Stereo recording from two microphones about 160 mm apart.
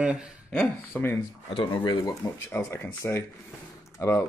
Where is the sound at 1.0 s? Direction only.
10° left (ahead or behind).